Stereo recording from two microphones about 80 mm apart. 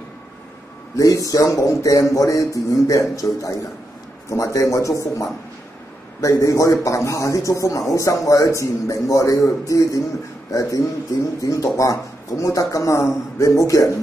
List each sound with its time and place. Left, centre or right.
0.9 s a man's voice: left